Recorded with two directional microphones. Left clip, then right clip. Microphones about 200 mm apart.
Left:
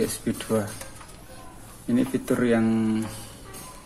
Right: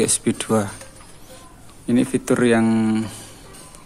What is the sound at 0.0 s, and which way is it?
Speech, 45° right (ahead or behind).